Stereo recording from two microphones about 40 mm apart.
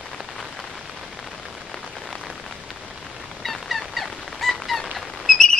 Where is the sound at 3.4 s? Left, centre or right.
Centre.